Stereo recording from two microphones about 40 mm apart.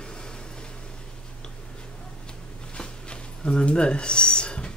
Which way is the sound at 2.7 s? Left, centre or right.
Left.